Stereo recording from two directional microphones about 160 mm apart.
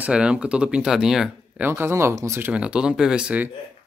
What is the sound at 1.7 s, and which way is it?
Speech, 15° right (ahead or behind).